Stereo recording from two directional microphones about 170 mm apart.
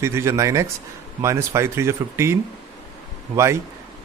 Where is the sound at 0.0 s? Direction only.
15° right (ahead or behind).